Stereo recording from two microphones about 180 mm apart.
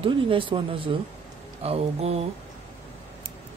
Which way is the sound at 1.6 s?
35° right (ahead or behind).